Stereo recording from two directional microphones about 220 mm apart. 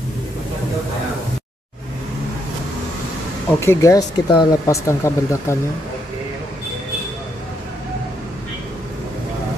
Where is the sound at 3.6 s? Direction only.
15° left (ahead or behind).